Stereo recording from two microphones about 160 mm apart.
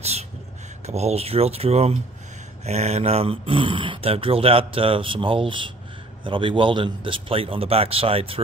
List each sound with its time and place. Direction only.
0.8 s speech: 40° right (ahead or behind)